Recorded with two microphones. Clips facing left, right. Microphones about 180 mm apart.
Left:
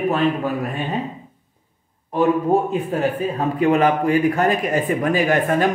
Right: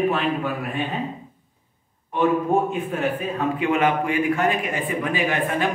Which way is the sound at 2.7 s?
35° left (ahead or behind).